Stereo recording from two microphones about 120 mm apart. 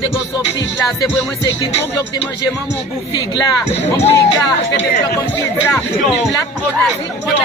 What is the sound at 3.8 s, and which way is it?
Speech, 20° left (ahead or behind).